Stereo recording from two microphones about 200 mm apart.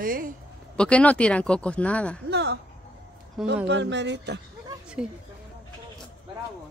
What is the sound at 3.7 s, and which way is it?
Speech, 65° right (ahead or behind).